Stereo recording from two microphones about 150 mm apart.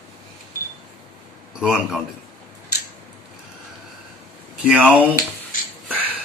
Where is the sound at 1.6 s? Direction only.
5° right (ahead or behind).